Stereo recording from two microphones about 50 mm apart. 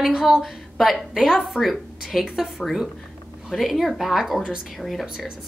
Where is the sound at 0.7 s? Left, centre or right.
Centre.